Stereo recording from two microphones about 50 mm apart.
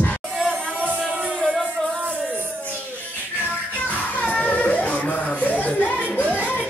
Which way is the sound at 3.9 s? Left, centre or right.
Left.